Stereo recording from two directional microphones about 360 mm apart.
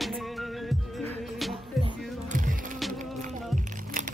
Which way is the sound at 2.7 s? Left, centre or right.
Centre.